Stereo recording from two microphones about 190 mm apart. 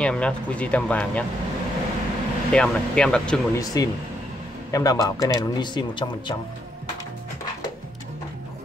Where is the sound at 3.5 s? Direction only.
20° left (ahead or behind).